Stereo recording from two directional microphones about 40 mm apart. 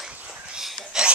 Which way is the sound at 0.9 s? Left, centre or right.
Centre.